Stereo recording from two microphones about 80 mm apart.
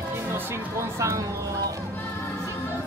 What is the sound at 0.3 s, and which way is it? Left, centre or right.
Music, right.